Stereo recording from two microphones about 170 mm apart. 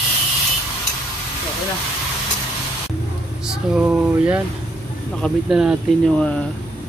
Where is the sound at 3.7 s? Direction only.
10° right (ahead or behind).